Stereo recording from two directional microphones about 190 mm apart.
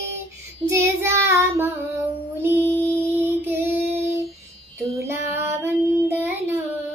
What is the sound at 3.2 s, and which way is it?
Female singing, 10° right (ahead or behind).